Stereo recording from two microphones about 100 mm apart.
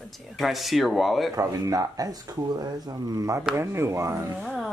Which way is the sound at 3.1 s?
35° right (ahead or behind).